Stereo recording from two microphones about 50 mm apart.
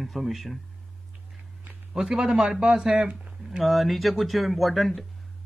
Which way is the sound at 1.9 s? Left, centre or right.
Centre.